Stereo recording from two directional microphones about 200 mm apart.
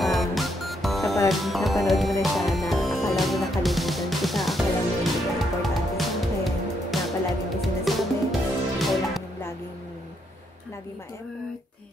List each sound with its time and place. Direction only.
0.0 s music: centre (ahead or behind)